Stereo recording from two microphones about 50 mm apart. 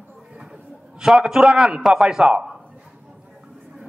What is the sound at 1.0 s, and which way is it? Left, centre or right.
A man's voice, centre.